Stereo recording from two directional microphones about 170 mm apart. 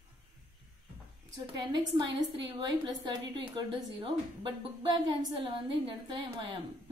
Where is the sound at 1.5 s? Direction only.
25° right (ahead or behind).